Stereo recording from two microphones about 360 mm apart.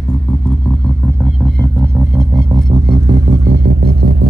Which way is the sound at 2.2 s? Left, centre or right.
Centre.